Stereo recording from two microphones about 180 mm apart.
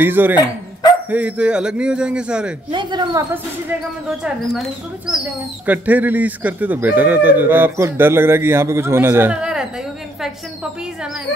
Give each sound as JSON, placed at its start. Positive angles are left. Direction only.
{"t": 0.0, "sound": "speech", "side_deg": -10}
{"t": 2.7, "sound": "speech", "side_deg": -25}
{"t": 4.2, "sound": "speech", "side_deg": -5}